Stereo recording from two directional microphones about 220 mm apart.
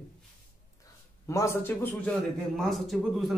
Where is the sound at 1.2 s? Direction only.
15° left (ahead or behind).